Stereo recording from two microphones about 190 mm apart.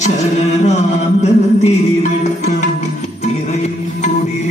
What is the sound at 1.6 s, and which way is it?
Music, 35° left (ahead or behind).